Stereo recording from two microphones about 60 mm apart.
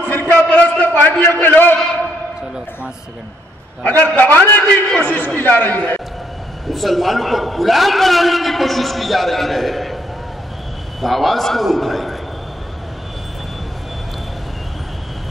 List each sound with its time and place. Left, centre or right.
0.0 s a sound: left
4.2 s speech: left
6.7 s a man's voice: centre
11.0 s a man's voice: centre